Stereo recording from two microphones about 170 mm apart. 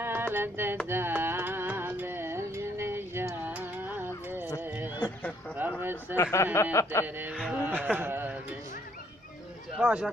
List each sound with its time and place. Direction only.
0.0 s a sound: 10° right (ahead or behind)
0.8 s music: 15° right (ahead or behind)
4.6 s a sound: 10° right (ahead or behind)
5.6 s speech: 10° right (ahead or behind)
6.3 s speech: 15° left (ahead or behind)
7.3 s speech: 5° right (ahead or behind)
9.8 s speech: 5° right (ahead or behind)